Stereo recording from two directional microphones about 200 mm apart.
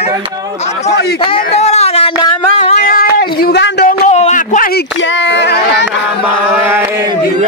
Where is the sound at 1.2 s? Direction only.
30° left (ahead or behind); by 3.9 s 55° left (ahead or behind).